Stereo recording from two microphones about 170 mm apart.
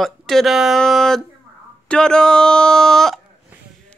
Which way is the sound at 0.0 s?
Centre (ahead or behind).